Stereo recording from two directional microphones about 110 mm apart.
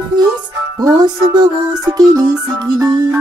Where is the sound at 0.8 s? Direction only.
35° right (ahead or behind).